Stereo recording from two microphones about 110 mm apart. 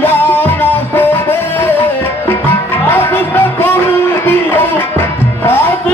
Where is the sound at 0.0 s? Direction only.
20° left (ahead or behind).